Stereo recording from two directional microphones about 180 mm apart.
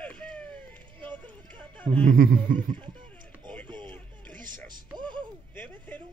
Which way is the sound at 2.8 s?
25° right (ahead or behind).